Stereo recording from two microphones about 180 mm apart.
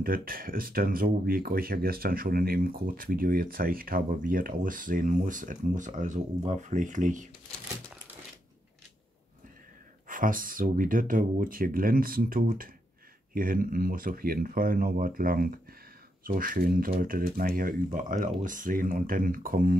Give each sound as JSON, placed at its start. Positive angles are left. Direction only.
{"t": 0.0, "sound": "speech", "side_deg": -55}
{"t": 10.0, "sound": "speech", "side_deg": -50}